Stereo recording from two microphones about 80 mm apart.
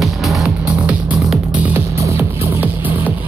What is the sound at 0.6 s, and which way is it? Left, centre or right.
Music, centre.